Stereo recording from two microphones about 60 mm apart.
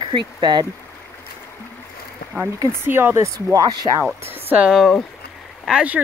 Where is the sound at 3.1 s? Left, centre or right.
Right.